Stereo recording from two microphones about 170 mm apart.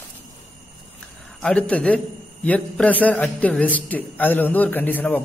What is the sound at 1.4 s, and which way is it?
A man's voice, 5° left (ahead or behind).